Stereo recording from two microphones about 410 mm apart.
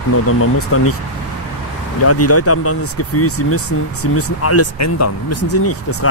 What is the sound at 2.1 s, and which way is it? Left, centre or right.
Speech, left.